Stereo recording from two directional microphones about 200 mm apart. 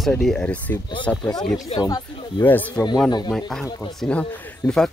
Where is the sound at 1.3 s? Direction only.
20° left (ahead or behind).